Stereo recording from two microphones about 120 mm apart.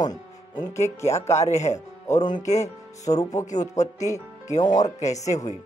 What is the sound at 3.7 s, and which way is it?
Speech, 75° left (ahead or behind).